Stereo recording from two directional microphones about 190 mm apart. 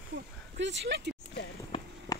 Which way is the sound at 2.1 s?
20° left (ahead or behind).